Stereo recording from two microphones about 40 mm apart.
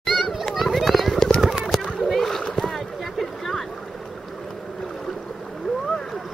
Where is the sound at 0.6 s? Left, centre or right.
Centre.